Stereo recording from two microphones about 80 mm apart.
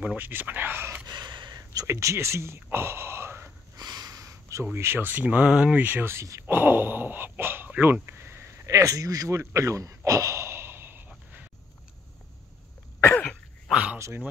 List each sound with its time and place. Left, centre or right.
0.0 s speech: right
1.0 s gasp: right
1.6 s a sound: right
1.9 s speech: right
3.7 s sniff: right
4.7 s speech: right
6.1 s speech: right
6.4 s speech: right
9.4 s gasp: right
13.1 s cough: centre
13.7 s a sound: centre
13.9 s dog: right